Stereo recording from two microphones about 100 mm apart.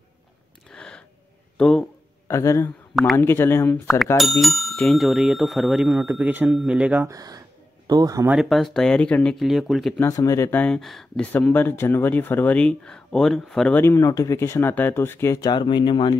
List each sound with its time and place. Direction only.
0.7 s a sound: 5° left (ahead or behind)
1.6 s speech: 10° left (ahead or behind)
2.2 s speech: 30° left (ahead or behind)
4.2 s speech: centre (ahead or behind)
6.1 s speech: 15° right (ahead or behind)
7.1 s speech: 40° right (ahead or behind)
8.5 s speech: centre (ahead or behind)
9.9 s speech: 30° left (ahead or behind)
10.7 s speech: centre (ahead or behind)
11.5 s speech: 20° left (ahead or behind); by 13.7 s 5° left (ahead or behind)
13.7 s speech: 25° left (ahead or behind)
15.3 s speech: 45° left (ahead or behind)